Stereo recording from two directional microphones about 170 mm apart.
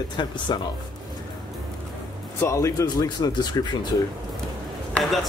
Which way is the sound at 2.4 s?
20° left (ahead or behind).